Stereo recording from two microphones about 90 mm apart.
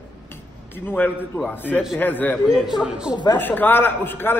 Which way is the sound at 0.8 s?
20° left (ahead or behind).